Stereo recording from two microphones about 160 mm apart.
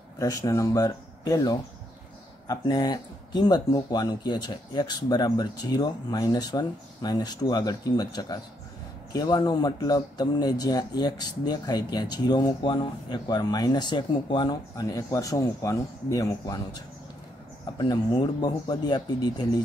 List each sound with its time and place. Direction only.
0.2 s speech: 20° left (ahead or behind)